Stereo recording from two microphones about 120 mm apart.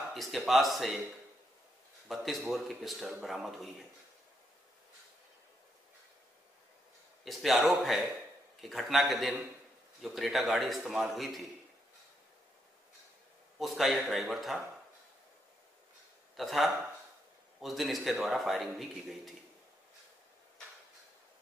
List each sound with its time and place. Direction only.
0.1 s a man's voice: centre (ahead or behind)
2.0 s a man's voice: centre (ahead or behind)
7.2 s a man's voice: centre (ahead or behind)
13.6 s a man's voice: centre (ahead or behind)
16.3 s a man's voice: centre (ahead or behind)